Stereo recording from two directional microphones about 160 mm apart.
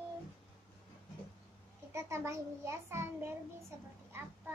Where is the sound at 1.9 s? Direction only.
15° right (ahead or behind).